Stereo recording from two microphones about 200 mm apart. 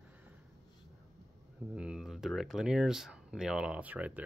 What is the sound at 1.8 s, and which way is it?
Speech, 5° right (ahead or behind).